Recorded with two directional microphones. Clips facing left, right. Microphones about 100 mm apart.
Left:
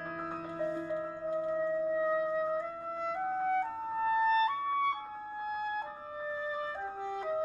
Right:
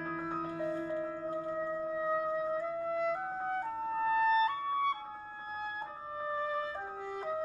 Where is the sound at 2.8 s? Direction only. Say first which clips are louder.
Right 4 dB; 30° left (ahead or behind).